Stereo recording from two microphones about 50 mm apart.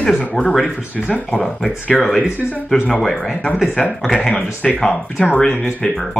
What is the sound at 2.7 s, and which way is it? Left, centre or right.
Speech, centre.